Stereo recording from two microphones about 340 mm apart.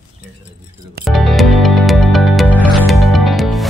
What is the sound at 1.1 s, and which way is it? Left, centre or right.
Music, centre.